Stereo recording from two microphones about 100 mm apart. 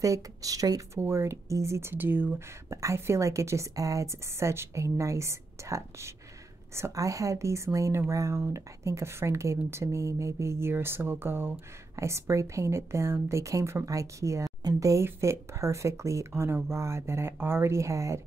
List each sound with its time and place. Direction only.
0.0 s a woman's voice: 35° right (ahead or behind)